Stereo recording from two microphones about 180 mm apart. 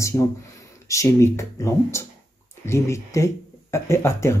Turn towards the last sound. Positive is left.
turn(degrees=15)  # may be behind; listen again after turning